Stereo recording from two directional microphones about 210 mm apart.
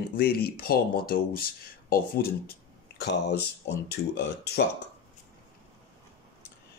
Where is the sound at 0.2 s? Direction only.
45° left (ahead or behind).